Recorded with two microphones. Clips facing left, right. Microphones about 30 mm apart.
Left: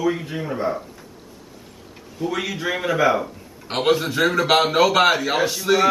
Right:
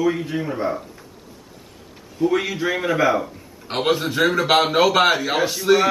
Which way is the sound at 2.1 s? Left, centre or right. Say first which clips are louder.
Right 5 dB; centre.